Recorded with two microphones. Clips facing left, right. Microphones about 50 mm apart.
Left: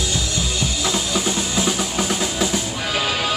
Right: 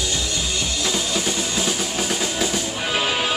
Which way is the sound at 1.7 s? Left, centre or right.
Centre.